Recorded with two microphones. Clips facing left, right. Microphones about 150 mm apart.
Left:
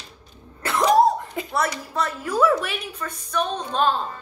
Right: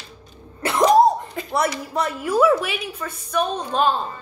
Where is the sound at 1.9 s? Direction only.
15° right (ahead or behind).